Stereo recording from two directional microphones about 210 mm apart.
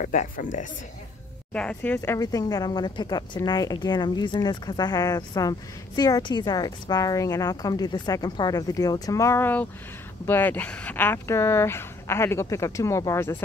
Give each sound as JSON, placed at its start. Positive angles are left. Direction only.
{"t": 0.0, "sound": "speech", "side_deg": 40}
{"t": 1.5, "sound": "speech", "side_deg": 5}